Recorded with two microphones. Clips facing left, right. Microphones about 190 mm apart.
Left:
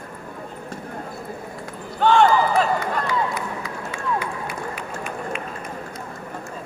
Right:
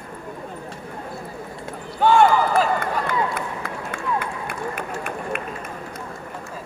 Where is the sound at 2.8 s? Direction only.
55° right (ahead or behind).